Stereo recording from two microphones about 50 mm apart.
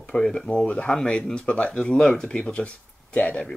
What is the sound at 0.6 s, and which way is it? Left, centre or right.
Speech, left.